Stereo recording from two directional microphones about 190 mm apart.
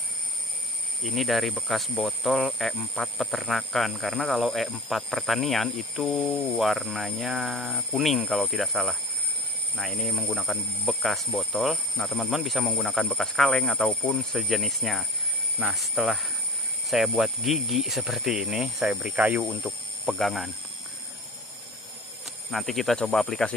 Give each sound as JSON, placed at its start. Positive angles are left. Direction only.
{"t": 1.0, "sound": "speech", "side_deg": 0}
{"t": 22.5, "sound": "speech", "side_deg": 0}